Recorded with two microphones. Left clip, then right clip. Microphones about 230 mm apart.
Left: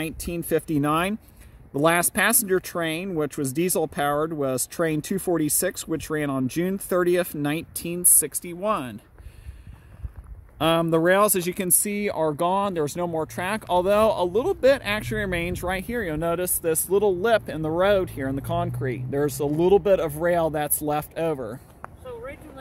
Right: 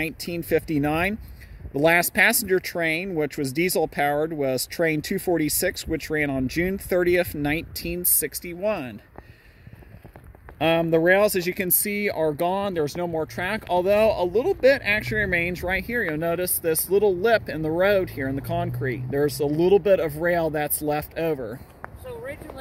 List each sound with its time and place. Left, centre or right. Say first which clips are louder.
0.0 s speech: right 2 dB; centre
10.8 s speech: right 1 dB; left; by 21.5 s centre
21.8 s a sound: right 2 dB; centre